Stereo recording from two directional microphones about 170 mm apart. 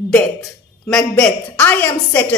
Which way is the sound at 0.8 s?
5° left (ahead or behind).